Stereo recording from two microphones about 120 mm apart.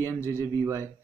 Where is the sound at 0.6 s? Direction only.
25° right (ahead or behind).